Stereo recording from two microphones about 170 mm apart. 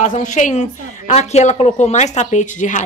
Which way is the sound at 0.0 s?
45° left (ahead or behind).